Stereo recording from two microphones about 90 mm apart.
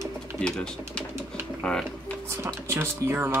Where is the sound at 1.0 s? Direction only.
15° left (ahead or behind).